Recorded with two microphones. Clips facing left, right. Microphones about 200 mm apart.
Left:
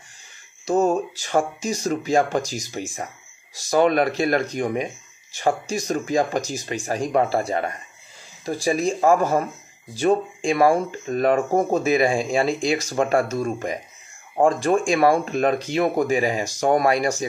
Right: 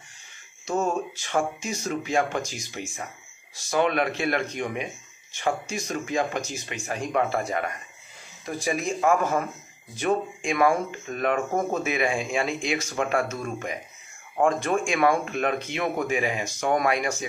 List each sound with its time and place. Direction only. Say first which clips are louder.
0.7 s speech: left 6 dB; 35° left (ahead or behind)